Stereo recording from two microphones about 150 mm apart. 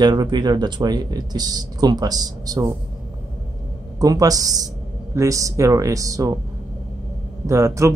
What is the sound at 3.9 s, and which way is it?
Speech, 25° right (ahead or behind).